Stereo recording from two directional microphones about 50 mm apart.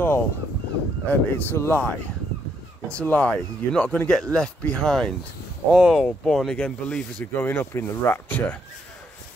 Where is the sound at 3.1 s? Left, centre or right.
Left.